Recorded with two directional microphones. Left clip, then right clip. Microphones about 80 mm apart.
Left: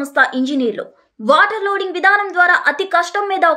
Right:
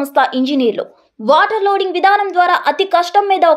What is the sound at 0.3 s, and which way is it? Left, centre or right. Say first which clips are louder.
A woman's voice: right 3 dB; centre.